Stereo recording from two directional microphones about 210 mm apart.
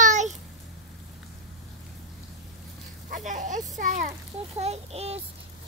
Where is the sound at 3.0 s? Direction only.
35° right (ahead or behind).